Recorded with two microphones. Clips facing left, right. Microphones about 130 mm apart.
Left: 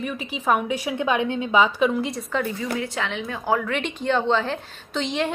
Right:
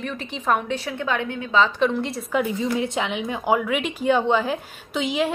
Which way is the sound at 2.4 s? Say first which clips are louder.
Right 4 dB; 15° right (ahead or behind).